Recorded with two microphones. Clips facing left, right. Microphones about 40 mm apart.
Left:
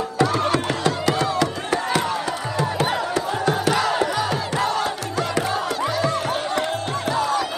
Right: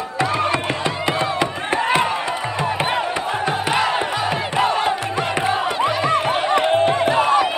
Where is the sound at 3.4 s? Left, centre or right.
Right.